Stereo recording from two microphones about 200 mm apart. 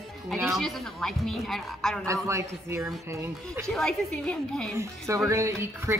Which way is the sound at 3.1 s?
15° right (ahead or behind).